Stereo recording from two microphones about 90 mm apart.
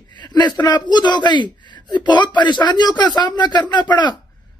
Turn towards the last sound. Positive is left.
turn(degrees=55)  # may be behind; listen again after turning